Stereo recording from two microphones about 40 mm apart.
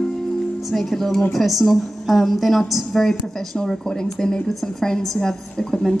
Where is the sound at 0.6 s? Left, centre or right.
Centre.